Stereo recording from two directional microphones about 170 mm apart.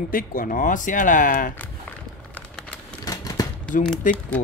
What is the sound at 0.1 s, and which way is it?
Speech, 55° left (ahead or behind).